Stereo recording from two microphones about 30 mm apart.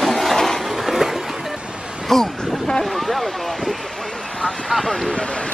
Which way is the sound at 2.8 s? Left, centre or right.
Centre.